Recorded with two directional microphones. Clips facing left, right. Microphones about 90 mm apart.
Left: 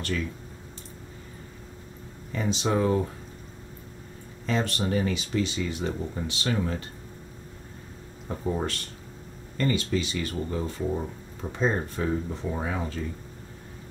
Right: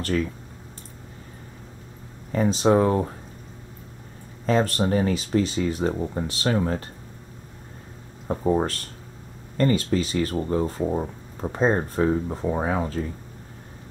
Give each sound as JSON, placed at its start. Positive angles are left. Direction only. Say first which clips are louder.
{"t": 2.3, "sound": "speech", "louder": "right 7 dB", "side_deg": -40}
{"t": 4.5, "sound": "speech", "louder": "right 6 dB", "side_deg": -40}
{"t": 8.3, "sound": "speech", "louder": "right 7 dB", "side_deg": -40}